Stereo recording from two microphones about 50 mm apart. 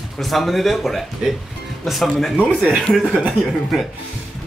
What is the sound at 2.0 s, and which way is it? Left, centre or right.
Speech, centre.